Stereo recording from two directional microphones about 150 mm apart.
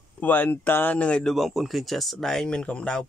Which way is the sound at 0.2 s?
10° left (ahead or behind).